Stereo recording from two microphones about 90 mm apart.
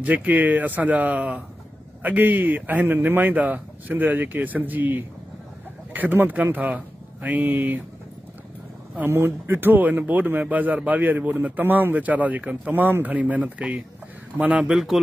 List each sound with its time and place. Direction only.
0.0 s speech: 15° right (ahead or behind)
8.9 s speech: 25° right (ahead or behind); by 15.0 s 5° right (ahead or behind)